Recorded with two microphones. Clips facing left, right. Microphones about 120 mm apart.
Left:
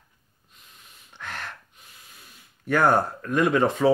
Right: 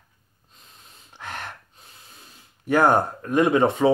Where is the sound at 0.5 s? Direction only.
30° right (ahead or behind).